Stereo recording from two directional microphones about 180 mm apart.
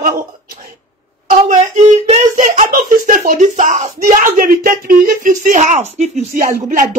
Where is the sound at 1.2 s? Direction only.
45° right (ahead or behind).